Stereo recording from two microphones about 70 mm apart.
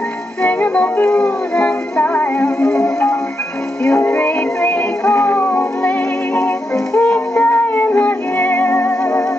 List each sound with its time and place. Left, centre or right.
0.4 s music: left